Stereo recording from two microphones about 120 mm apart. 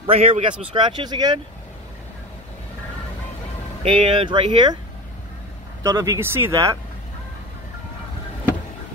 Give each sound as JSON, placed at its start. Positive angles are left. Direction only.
{"t": 0.0, "sound": "speech", "side_deg": -55}
{"t": 3.8, "sound": "speech", "side_deg": -50}
{"t": 5.9, "sound": "speech", "side_deg": -25}